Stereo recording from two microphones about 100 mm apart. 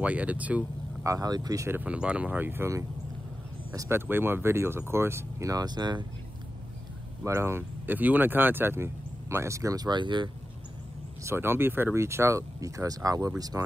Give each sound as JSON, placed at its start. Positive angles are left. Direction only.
{"t": 0.0, "sound": "speech", "side_deg": -15}
{"t": 1.0, "sound": "speech", "side_deg": -35}
{"t": 1.7, "sound": "speech", "side_deg": -15}
{"t": 7.2, "sound": "speech", "side_deg": -25}
{"t": 9.8, "sound": "speech", "side_deg": -50}
{"t": 11.2, "sound": "speech", "side_deg": -25}